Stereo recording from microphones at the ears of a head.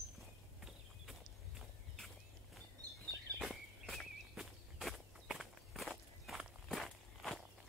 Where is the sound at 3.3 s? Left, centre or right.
Centre.